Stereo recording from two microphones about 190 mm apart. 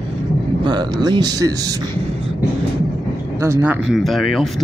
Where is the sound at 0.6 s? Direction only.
25° right (ahead or behind).